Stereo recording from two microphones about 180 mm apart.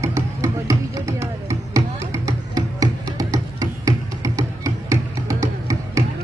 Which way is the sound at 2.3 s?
20° right (ahead or behind).